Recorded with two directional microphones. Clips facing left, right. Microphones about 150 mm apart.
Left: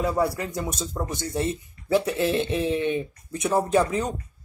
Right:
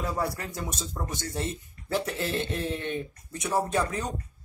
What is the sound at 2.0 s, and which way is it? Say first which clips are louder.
Speech: left 7 dB; 10° left (ahead or behind).